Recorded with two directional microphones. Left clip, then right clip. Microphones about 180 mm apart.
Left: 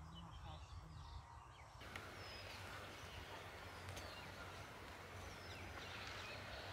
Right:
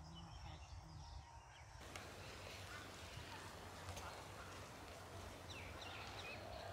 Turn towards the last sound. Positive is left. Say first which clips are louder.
# left 1 dB
turn(degrees=0)  # may be behind; listen again after turning